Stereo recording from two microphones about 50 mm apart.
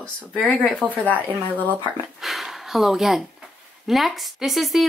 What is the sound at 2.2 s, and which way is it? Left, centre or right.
Speech, centre.